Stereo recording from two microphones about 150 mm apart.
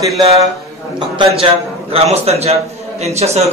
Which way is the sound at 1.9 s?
45° right (ahead or behind).